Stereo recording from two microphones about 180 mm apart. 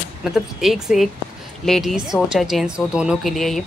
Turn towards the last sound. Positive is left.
turn(degrees=0)  # may be behind; listen again after turning